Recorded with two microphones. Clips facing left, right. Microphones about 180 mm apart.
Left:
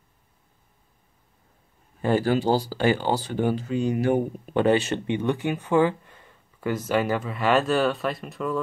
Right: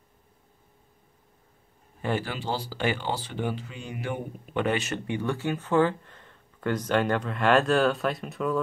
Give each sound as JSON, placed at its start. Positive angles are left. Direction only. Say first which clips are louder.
{"t": 2.0, "sound": "speech", "louder": "left 8 dB", "side_deg": 40}